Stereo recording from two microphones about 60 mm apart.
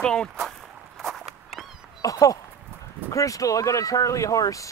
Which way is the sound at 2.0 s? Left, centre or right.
Left.